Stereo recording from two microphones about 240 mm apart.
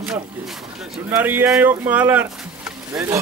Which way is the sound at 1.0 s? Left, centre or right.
Centre.